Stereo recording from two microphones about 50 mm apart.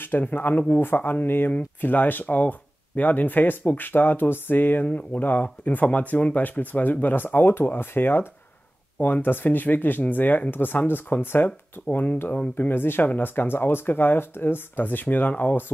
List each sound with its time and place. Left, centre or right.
0.0 s speech: left
4.8 s speech: left
12.5 s speech: left